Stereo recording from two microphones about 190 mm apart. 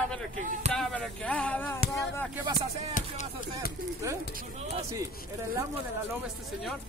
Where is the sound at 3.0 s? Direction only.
45° left (ahead or behind).